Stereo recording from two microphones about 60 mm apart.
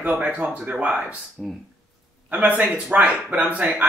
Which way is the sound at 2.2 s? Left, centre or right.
Right.